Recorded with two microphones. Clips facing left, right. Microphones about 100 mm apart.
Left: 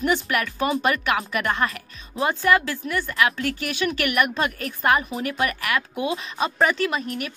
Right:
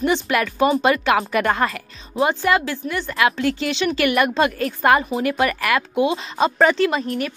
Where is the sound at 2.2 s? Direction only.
20° right (ahead or behind).